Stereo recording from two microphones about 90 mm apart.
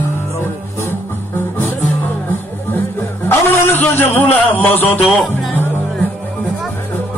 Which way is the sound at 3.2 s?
25° left (ahead or behind).